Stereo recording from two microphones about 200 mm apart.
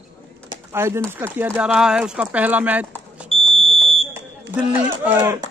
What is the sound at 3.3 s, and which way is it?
Smoke detector, 30° left (ahead or behind).